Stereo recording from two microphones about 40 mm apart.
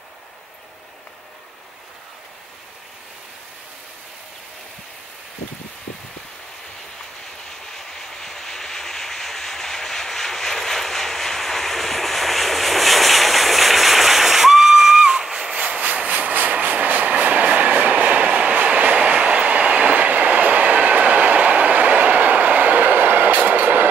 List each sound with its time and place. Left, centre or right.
7.7 s vehicle: centre
15.5 s vehicle: right